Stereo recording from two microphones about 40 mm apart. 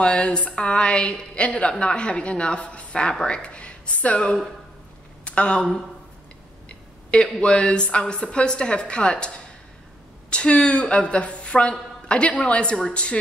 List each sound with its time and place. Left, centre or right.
0.0 s a woman's voice: left
6.7 s a sound: left
7.3 s a woman's voice: left
10.3 s a woman's voice: left